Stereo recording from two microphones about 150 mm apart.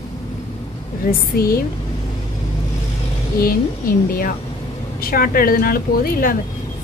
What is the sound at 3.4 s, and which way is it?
A woman's voice, 75° left (ahead or behind).